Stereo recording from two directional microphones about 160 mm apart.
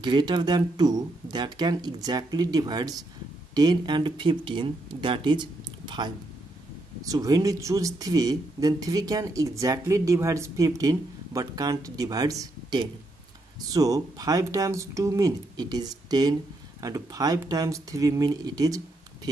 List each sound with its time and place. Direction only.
0.0 s speech: 30° right (ahead or behind)